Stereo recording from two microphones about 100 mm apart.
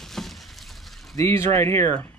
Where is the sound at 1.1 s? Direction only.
30° left (ahead or behind).